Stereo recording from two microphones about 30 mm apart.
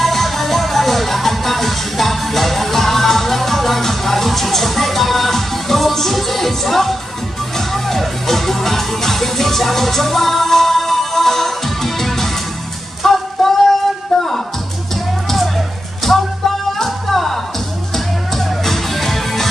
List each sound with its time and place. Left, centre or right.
0.0 s music: centre